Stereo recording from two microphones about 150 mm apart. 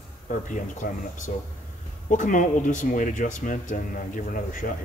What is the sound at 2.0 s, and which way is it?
Speech, 55° left (ahead or behind).